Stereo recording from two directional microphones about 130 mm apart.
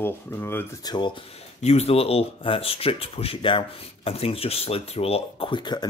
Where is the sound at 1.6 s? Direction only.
55° left (ahead or behind).